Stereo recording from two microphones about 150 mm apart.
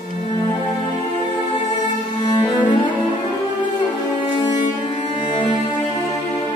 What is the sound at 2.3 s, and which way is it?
Cello, 30° left (ahead or behind).